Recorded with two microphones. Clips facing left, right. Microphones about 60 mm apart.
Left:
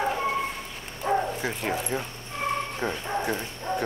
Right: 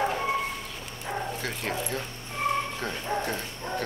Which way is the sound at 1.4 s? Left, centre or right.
Centre.